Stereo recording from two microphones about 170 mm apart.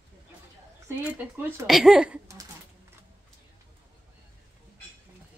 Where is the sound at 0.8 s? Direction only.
10° right (ahead or behind).